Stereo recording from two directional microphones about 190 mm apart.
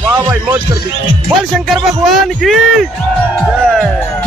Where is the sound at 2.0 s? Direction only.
Centre (ahead or behind).